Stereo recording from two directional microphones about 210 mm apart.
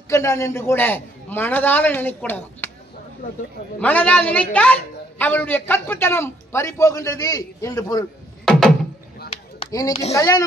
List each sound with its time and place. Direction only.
0.1 s a man's voice: 15° left (ahead or behind)
3.8 s a man's voice: 5° left (ahead or behind)
9.3 s chop: 20° left (ahead or behind)
10.1 s a man's voice: 15° left (ahead or behind)